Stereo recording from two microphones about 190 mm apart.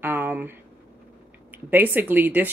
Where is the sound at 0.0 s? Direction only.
10° right (ahead or behind).